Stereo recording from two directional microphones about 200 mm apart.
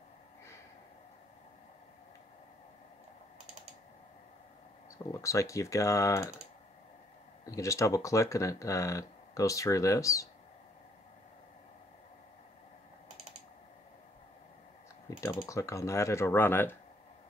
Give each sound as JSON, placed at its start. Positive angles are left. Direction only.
{"t": 4.9, "sound": "speech", "side_deg": 15}
{"t": 7.5, "sound": "speech", "side_deg": 15}
{"t": 15.0, "sound": "typing", "side_deg": 15}
{"t": 15.4, "sound": "speech", "side_deg": 15}